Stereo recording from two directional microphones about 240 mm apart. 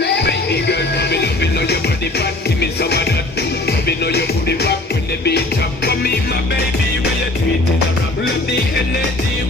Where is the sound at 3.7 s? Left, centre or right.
Left.